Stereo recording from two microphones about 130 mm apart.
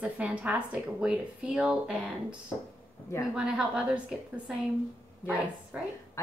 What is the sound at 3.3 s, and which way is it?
Speech, 5° right (ahead or behind).